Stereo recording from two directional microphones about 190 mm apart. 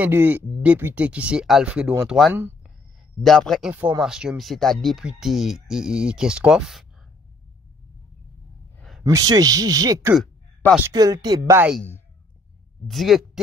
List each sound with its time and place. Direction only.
0.0 s speech: 10° right (ahead or behind)
3.2 s speech: centre (ahead or behind)
8.7 s a sound: centre (ahead or behind)
9.0 s speech: 20° right (ahead or behind)
12.8 s speech: centre (ahead or behind)